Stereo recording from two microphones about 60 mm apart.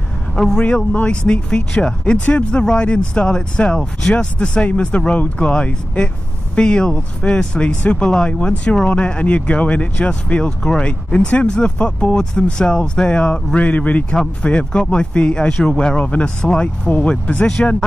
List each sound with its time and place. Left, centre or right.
0.4 s speech: centre